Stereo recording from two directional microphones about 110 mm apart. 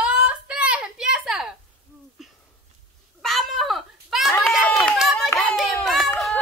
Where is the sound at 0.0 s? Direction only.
10° right (ahead or behind).